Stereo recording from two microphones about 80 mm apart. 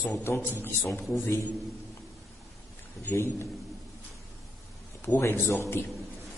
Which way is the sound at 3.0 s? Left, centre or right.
Left.